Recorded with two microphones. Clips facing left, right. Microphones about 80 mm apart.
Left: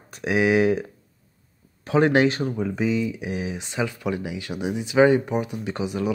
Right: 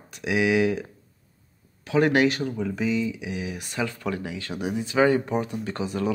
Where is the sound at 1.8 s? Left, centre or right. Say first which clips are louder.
Left 2 dB; left.